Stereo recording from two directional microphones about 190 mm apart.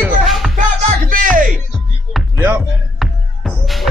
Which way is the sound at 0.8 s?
45° right (ahead or behind).